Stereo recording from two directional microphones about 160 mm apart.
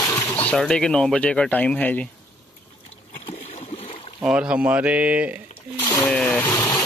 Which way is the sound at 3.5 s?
40° left (ahead or behind).